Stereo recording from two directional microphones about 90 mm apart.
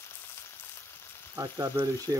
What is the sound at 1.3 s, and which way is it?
Frying, 45° right (ahead or behind).